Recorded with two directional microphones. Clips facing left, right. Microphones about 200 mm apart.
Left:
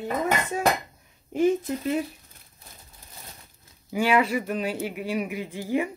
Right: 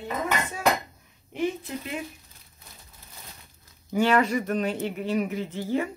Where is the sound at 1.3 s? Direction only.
45° left (ahead or behind).